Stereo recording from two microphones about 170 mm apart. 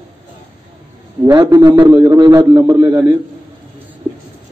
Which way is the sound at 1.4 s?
20° right (ahead or behind).